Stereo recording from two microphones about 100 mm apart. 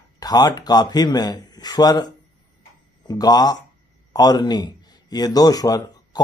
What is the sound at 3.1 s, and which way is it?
Speech, 40° left (ahead or behind).